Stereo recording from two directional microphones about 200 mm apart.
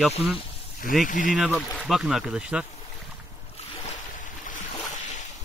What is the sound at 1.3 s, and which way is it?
Speech, centre (ahead or behind).